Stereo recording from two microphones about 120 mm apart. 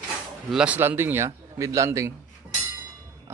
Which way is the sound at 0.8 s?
20° right (ahead or behind).